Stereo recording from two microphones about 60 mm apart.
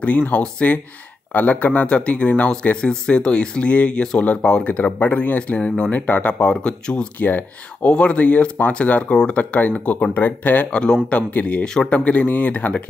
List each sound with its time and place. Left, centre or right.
0.3 s speech: left
4.6 s speech: left
7.2 s speech: left
7.9 s speech: centre
11.6 s speech: centre
11.9 s speech: left